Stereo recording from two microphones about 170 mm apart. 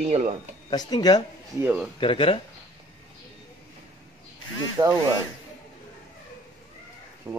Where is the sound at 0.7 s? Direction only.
25° left (ahead or behind).